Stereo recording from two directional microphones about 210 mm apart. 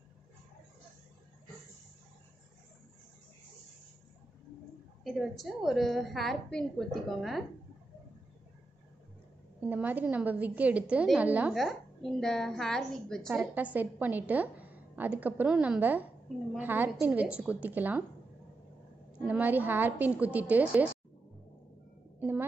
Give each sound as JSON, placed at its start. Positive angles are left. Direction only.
{"t": 5.0, "sound": "a woman's voice", "side_deg": 0}
{"t": 9.7, "sound": "a woman's voice", "side_deg": -10}
{"t": 19.2, "sound": "a woman's voice", "side_deg": -5}